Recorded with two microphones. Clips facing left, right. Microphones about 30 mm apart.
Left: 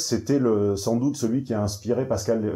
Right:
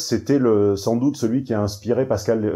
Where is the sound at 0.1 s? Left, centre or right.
Centre.